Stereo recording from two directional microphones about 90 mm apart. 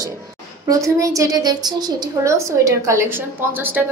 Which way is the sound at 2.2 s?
35° right (ahead or behind).